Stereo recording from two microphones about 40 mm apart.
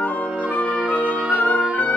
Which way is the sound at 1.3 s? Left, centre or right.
Left.